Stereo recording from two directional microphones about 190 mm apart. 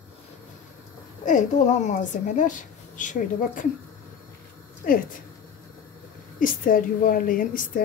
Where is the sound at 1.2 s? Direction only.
40° left (ahead or behind).